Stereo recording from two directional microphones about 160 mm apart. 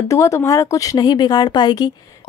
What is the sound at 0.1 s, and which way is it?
A woman's voice, 20° left (ahead or behind).